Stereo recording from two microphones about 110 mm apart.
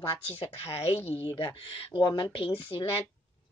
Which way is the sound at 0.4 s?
65° left (ahead or behind).